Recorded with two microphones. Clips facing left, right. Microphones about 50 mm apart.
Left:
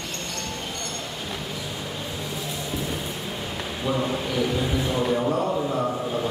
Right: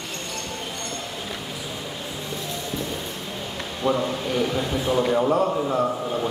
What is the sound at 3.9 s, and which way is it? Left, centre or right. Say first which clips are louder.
A man's voice: right 1 dB; centre.